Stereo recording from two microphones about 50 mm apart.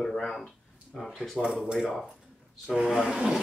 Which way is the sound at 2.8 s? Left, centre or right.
Centre.